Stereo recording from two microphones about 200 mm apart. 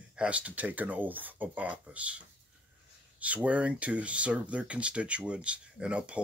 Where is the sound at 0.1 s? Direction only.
5° right (ahead or behind).